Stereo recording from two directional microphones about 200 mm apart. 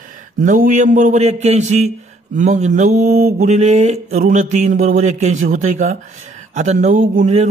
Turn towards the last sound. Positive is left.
turn(degrees=-35)  # may be behind; listen again after turning